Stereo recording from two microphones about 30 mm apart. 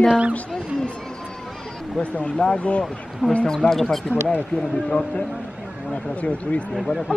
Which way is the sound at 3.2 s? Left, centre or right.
Right.